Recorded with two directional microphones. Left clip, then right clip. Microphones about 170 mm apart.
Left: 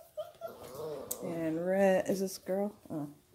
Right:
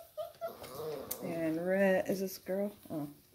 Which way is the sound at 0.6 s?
5° left (ahead or behind).